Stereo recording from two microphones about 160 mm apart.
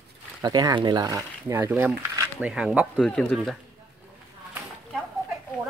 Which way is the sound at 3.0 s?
5° left (ahead or behind).